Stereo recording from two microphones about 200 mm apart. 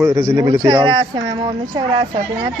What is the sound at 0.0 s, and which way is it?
Speech, 15° right (ahead or behind).